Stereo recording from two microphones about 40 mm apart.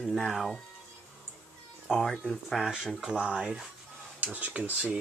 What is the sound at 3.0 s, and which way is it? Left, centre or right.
Speech, right.